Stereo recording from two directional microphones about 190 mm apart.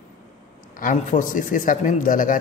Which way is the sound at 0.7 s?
45° left (ahead or behind).